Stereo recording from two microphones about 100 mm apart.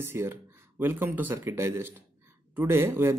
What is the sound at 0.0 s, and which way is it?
Speech, 20° right (ahead or behind).